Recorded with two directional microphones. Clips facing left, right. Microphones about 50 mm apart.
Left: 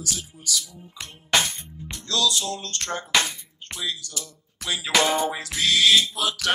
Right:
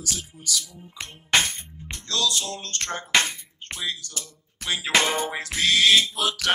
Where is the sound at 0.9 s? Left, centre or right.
Right.